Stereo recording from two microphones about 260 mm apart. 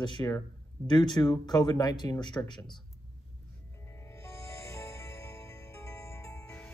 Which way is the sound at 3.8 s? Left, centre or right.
Centre.